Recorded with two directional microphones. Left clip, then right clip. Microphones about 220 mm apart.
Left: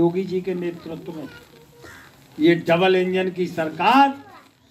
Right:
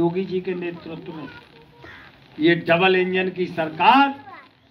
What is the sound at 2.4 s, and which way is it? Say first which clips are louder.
A man's voice: even; 30° left (ahead or behind).